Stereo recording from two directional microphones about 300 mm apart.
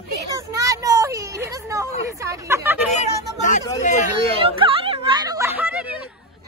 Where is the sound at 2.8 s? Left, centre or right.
Left.